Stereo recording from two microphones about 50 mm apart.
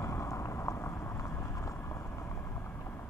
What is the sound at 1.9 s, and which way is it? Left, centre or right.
Vehicle, left.